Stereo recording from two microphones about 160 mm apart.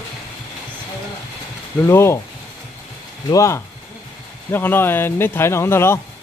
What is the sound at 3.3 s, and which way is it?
Speech, 20° left (ahead or behind).